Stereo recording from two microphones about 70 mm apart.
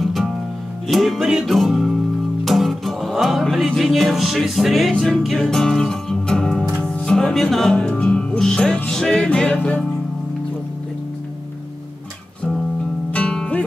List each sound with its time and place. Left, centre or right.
0.0 s music: centre
13.1 s music: centre